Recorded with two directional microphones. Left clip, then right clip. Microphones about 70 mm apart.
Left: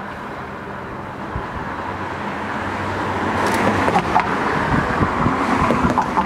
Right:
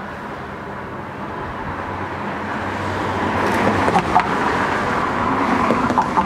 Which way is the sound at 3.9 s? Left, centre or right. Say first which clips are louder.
Right 1 dB; centre.